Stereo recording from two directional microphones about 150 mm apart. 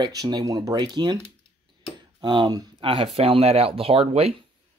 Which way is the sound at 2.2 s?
30° right (ahead or behind).